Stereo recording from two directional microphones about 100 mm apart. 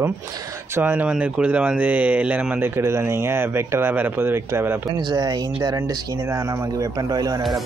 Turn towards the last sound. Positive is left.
turn(degrees=-40)  # may be behind; listen again after turning